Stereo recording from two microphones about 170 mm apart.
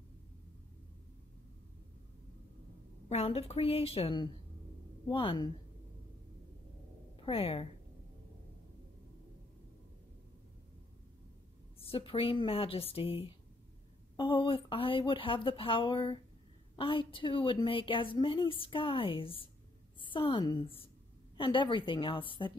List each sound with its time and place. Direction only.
3.1 s a woman's voice: 35° left (ahead or behind)
7.2 s a woman's voice: 35° left (ahead or behind)
11.8 s a woman's voice: 35° left (ahead or behind)